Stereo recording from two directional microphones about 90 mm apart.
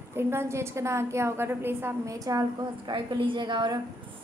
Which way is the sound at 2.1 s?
40° right (ahead or behind).